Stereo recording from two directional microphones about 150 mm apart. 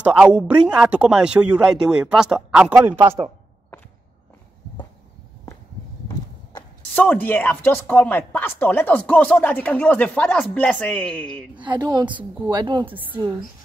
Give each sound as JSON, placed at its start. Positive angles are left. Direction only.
{"t": 0.0, "sound": "speech", "side_deg": -10}
{"t": 7.0, "sound": "speech", "side_deg": 10}
{"t": 11.5, "sound": "a woman's voice", "side_deg": -30}